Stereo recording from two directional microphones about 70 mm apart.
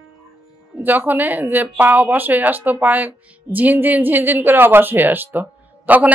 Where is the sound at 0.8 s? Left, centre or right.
Right.